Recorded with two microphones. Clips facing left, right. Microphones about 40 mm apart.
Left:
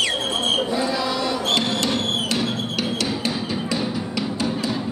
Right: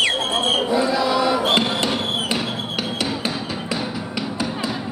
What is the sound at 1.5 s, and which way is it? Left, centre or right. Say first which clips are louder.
Music: right 2 dB; centre.